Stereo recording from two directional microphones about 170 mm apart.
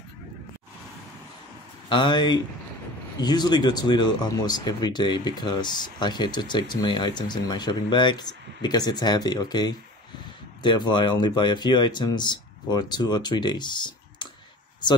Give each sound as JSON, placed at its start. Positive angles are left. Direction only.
{"t": 1.9, "sound": "speech", "side_deg": 25}